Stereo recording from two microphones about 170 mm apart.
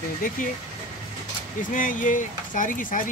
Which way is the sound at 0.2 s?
55° left (ahead or behind).